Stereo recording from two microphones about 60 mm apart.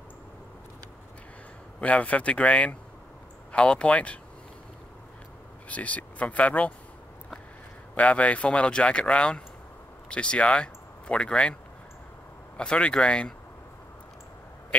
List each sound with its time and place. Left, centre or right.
1.8 s speech: left
5.7 s speech: left
7.9 s speech: left
12.5 s speech: centre